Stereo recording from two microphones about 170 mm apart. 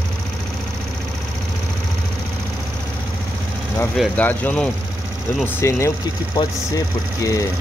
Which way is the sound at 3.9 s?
Centre (ahead or behind).